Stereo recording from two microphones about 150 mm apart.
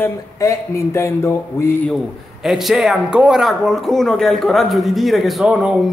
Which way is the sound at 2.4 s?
Centre (ahead or behind).